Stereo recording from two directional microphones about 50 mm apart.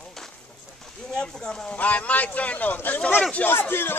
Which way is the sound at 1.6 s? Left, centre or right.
Left.